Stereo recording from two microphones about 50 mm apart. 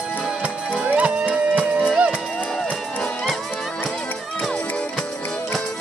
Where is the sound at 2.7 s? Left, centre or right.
Left.